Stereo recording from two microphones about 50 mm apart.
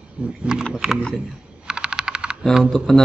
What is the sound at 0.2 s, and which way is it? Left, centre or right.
Speech, centre.